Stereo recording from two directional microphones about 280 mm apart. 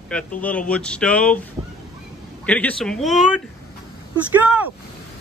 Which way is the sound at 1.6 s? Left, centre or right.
Centre.